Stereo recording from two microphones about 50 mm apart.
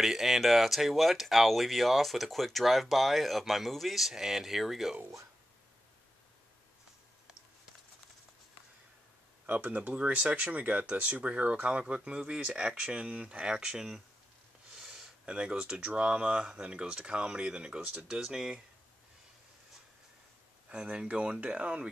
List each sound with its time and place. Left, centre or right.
0.0 s speech: centre
9.5 s speech: right
14.9 s speech: centre
20.7 s speech: centre